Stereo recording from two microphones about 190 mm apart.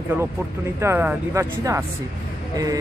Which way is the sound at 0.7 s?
10° right (ahead or behind).